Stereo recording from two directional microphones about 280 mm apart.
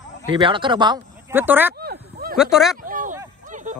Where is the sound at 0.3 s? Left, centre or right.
Centre.